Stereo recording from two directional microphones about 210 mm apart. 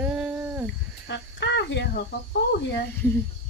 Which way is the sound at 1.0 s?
55° left (ahead or behind).